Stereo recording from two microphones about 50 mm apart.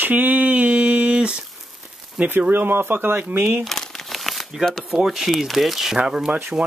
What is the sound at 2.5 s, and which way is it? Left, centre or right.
Speech, right.